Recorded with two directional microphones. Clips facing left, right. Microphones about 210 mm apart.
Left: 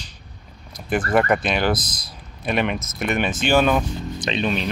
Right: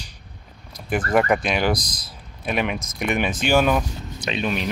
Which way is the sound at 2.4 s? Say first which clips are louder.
Left 2 dB; 5° right (ahead or behind).